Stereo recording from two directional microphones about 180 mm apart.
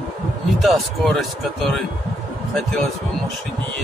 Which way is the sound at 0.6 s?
Centre (ahead or behind).